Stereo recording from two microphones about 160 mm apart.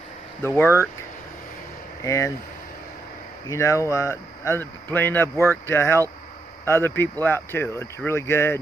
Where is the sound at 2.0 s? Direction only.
20° left (ahead or behind).